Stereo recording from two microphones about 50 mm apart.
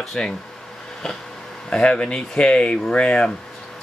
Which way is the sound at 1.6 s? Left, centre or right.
Centre.